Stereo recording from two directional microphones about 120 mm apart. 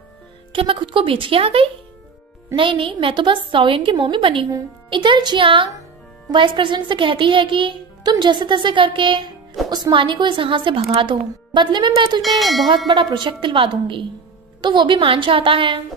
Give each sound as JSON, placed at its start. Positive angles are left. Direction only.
{"t": 0.5, "sound": "speech", "side_deg": -45}
{"t": 12.2, "sound": "a sound", "side_deg": 0}
{"t": 12.6, "sound": "speech", "side_deg": -40}